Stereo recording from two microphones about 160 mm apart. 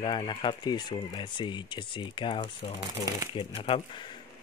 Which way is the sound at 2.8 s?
20° right (ahead or behind).